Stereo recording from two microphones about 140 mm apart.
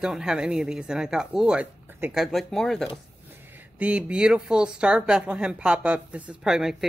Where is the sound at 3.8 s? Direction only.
10° right (ahead or behind).